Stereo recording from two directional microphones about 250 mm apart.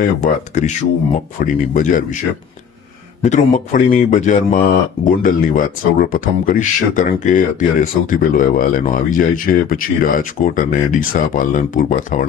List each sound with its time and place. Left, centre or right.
0.2 s speech: left
3.2 s speech: left